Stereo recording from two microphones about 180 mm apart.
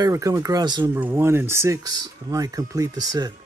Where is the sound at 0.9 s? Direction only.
10° right (ahead or behind).